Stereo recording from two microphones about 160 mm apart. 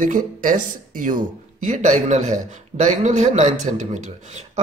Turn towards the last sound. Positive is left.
turn(degrees=-50)  # may be behind; listen again after turning